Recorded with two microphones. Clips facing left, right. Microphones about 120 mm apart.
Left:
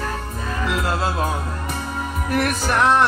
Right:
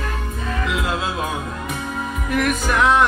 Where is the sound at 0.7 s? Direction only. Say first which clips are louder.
Left 1 dB; 40° left (ahead or behind).